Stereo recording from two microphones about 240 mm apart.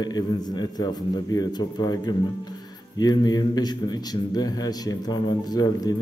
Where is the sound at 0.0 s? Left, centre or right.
Centre.